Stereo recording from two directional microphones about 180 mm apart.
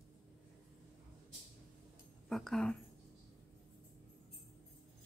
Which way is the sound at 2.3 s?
Centre (ahead or behind).